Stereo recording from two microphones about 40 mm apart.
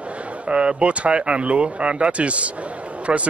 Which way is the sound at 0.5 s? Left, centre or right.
Right.